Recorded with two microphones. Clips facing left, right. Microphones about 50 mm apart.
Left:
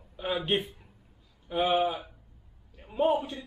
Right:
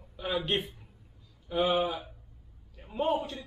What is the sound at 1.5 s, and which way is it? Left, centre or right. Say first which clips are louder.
Speech: left 1 dB; centre.